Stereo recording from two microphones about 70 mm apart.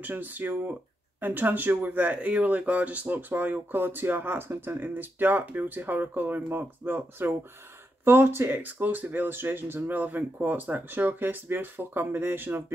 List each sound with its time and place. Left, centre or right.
0.0 s speech: right